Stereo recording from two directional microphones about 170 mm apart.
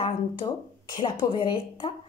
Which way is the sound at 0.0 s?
25° left (ahead or behind).